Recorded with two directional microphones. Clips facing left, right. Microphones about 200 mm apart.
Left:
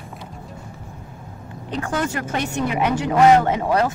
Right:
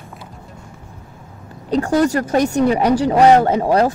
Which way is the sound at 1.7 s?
35° right (ahead or behind).